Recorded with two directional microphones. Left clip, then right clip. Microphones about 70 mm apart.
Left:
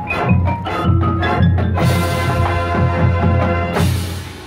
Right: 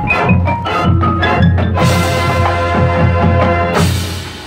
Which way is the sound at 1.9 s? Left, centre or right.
Centre.